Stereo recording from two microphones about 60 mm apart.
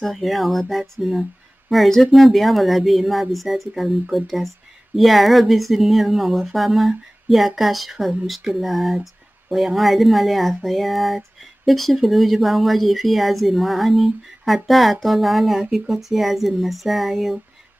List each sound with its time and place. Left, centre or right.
0.0 s speech: centre